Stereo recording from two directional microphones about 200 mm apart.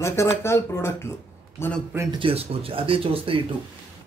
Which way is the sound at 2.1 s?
25° right (ahead or behind).